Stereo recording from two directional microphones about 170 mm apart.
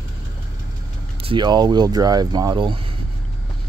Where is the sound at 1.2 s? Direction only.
25° right (ahead or behind).